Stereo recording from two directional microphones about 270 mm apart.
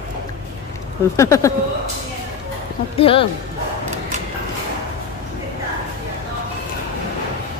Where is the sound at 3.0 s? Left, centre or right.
Centre.